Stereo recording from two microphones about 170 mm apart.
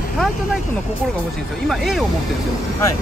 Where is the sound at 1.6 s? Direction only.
Centre (ahead or behind).